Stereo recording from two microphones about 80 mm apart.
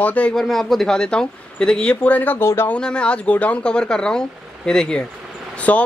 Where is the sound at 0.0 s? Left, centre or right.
Centre.